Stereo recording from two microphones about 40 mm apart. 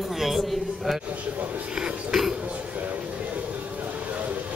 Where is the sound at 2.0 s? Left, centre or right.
Centre.